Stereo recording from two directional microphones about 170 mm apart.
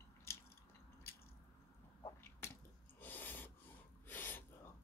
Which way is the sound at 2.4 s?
15° left (ahead or behind).